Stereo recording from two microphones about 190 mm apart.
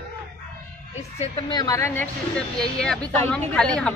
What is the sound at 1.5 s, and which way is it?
Speech, 20° left (ahead or behind).